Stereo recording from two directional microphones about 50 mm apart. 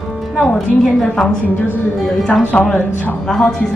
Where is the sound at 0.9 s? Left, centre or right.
Centre.